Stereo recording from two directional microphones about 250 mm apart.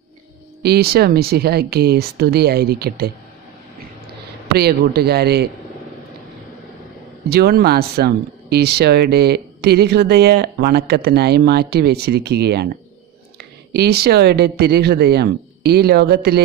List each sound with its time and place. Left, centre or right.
0.6 s speech: right
4.6 s speech: right
7.2 s speech: right
13.7 s speech: right